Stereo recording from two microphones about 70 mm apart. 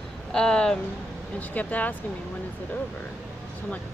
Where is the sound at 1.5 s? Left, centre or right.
Left.